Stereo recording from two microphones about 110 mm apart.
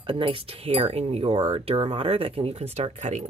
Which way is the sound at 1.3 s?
55° right (ahead or behind).